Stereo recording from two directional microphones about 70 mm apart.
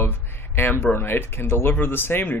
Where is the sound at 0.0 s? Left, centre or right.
Left.